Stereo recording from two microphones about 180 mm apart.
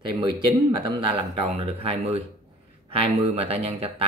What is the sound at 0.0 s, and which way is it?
Speech, 25° right (ahead or behind).